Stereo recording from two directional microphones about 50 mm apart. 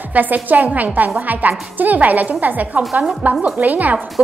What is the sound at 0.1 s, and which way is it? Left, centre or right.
A woman's voice, right.